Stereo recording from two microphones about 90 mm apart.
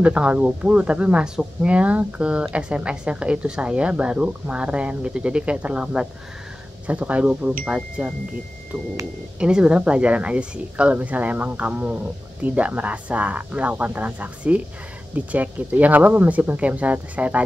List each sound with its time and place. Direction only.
0.0 s speech: 10° right (ahead or behind)
9.4 s speech: 10° right (ahead or behind)